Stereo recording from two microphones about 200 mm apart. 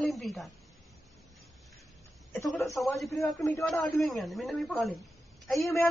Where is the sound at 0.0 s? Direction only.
Centre (ahead or behind).